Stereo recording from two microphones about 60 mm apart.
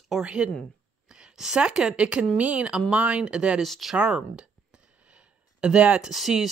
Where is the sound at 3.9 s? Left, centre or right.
Centre.